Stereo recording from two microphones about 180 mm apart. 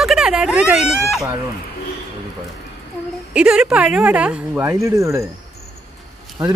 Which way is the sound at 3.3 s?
5° right (ahead or behind).